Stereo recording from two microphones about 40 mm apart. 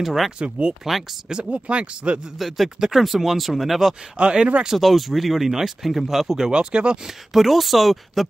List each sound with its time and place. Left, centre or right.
0.0 s speech: centre
0.4 s speech: right
2.3 s speech: centre
4.2 s speech: right
4.6 s speech: centre
6.5 s speech: right
7.1 s speech: centre